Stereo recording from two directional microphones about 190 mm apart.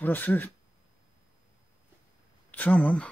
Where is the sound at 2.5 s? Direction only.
10° left (ahead or behind).